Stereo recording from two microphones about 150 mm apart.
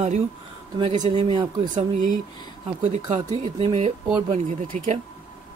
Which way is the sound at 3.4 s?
45° right (ahead or behind).